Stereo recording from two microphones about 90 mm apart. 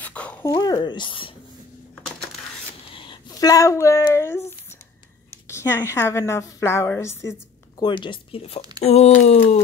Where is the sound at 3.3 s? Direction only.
45° left (ahead or behind).